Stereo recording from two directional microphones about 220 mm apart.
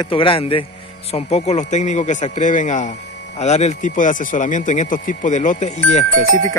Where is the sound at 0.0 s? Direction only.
25° left (ahead or behind).